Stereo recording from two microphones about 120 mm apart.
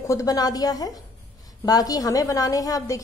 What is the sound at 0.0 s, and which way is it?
A woman's voice, 25° left (ahead or behind).